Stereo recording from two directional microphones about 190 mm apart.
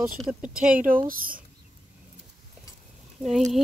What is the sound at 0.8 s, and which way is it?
Speech, 45° right (ahead or behind).